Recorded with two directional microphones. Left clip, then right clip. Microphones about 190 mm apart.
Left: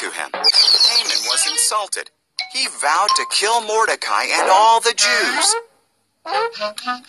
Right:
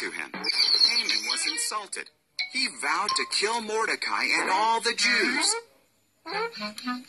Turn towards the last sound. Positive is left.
turn(degrees=50)  # may be behind; listen again after turning